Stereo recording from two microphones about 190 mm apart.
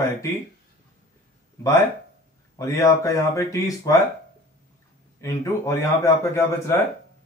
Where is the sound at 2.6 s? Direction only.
15° left (ahead or behind).